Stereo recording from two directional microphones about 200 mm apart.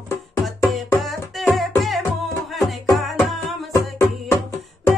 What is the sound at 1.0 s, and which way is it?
Music, centre (ahead or behind).